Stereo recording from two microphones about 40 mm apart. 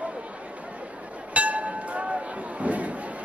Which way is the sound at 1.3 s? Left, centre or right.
Right.